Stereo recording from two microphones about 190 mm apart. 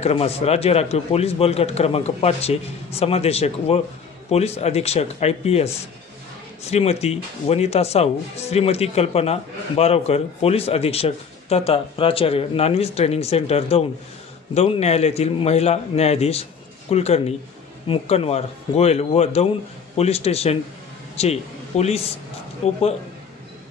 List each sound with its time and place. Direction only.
0.0 s a man's voice: 30° left (ahead or behind)